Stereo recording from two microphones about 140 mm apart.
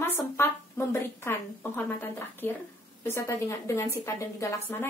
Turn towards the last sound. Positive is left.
turn(degrees=20)  # may be behind; listen again after turning